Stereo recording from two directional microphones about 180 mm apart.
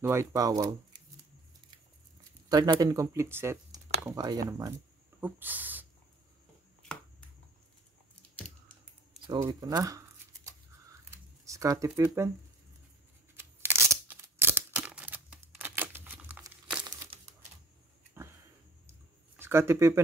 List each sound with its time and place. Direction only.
0.0 s speech: 15° right (ahead or behind)
2.5 s speech: 20° right (ahead or behind)
5.2 s a sound: 10° right (ahead or behind)
6.8 s finger snapping: 5° left (ahead or behind)
8.4 s a sound: 5° left (ahead or behind)
9.3 s shuffling cards: 20° right (ahead or behind)
13.4 s a sound: 15° right (ahead or behind)
16.8 s crumpling: 25° right (ahead or behind)
19.3 s speech: 15° right (ahead or behind)